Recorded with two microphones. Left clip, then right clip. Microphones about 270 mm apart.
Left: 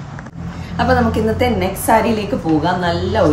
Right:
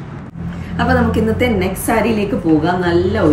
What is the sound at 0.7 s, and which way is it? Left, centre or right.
A woman's voice, centre.